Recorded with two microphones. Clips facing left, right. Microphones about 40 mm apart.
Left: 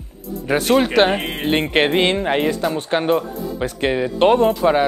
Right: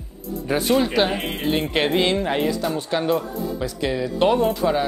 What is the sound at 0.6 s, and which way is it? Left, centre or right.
Speech, left.